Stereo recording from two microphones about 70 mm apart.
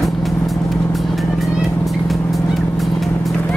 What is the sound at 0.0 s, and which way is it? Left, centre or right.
Vehicle, centre.